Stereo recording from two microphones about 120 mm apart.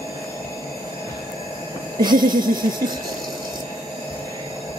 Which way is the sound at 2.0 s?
35° right (ahead or behind).